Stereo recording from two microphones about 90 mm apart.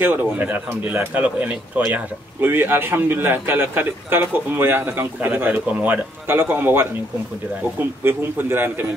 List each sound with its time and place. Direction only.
0.4 s speech: 20° right (ahead or behind)
6.2 s speech: 25° right (ahead or behind)
8.0 s speech: 25° right (ahead or behind)